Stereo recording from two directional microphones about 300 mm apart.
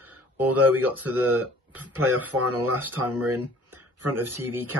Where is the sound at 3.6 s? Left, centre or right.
Right.